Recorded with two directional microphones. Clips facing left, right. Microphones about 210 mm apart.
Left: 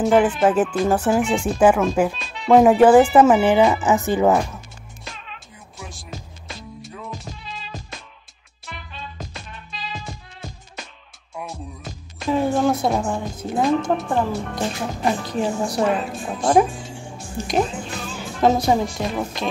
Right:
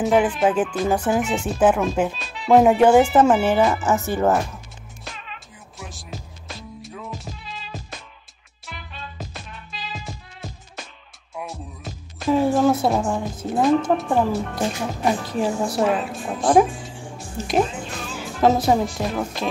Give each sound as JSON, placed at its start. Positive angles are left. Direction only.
{"t": 0.0, "sound": "speech", "side_deg": -5}
{"t": 3.8, "sound": "speech", "side_deg": 15}
{"t": 5.1, "sound": "music", "side_deg": 0}
{"t": 11.3, "sound": "speech", "side_deg": 0}